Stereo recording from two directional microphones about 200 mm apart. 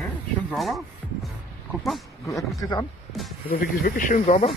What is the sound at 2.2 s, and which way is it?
Speech, 15° left (ahead or behind).